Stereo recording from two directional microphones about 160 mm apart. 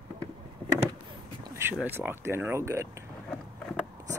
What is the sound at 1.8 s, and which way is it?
Speech, 10° right (ahead or behind).